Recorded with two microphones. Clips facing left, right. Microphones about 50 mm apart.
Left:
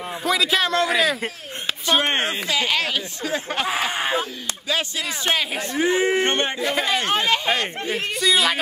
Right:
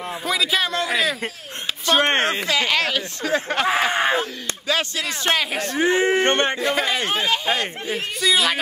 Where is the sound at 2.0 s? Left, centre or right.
Right.